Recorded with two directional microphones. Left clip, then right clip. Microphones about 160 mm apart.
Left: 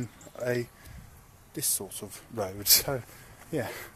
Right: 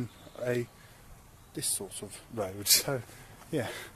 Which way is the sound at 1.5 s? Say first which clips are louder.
Left 2 dB; 45° left (ahead or behind).